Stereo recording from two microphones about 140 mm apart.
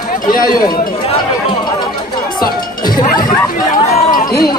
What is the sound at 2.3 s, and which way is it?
Music, 30° left (ahead or behind).